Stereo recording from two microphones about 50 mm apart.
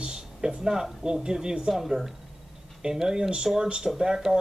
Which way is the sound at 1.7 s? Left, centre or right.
Centre.